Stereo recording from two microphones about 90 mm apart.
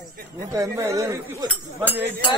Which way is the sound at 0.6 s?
40° right (ahead or behind).